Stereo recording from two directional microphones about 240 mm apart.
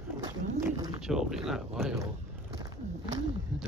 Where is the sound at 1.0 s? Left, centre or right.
Centre.